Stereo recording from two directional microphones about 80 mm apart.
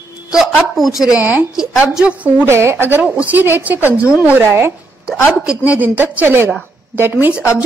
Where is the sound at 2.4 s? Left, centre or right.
Right.